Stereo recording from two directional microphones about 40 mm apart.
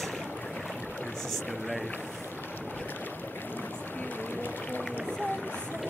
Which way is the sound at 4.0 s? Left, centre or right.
Left.